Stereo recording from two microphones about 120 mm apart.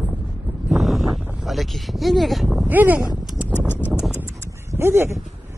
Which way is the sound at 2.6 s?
15° right (ahead or behind).